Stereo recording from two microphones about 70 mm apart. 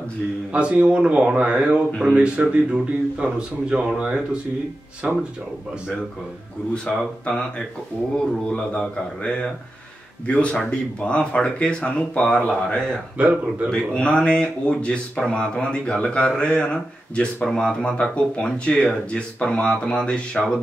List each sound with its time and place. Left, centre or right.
0.5 s speech: centre
6.7 s speech: centre
13.2 s speech: centre
13.7 s speech: centre